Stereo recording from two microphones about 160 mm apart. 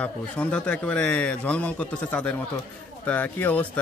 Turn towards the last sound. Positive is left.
turn(degrees=10)  # may be behind; listen again after turning